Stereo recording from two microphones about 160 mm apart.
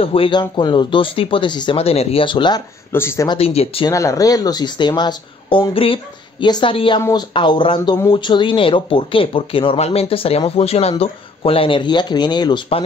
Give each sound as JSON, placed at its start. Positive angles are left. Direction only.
{"t": 0.0, "sound": "speech", "side_deg": 35}
{"t": 2.9, "sound": "speech", "side_deg": 15}
{"t": 3.3, "sound": "speech", "side_deg": 40}
{"t": 3.9, "sound": "speech", "side_deg": 20}
{"t": 7.0, "sound": "speech", "side_deg": 20}
{"t": 7.3, "sound": "speech", "side_deg": 30}